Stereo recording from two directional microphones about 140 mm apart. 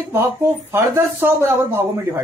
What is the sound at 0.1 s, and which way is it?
Speech, 20° right (ahead or behind).